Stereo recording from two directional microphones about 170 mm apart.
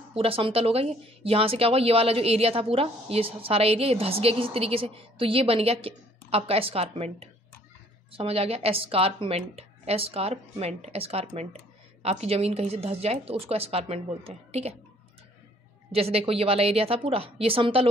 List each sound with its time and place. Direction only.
0.1 s speech: 35° right (ahead or behind)
15.9 s speech: 35° right (ahead or behind)